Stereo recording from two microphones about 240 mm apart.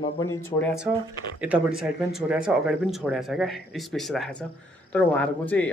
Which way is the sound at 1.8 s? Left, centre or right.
Centre.